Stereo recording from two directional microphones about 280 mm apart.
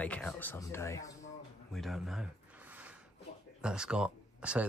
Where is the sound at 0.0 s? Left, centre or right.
Centre.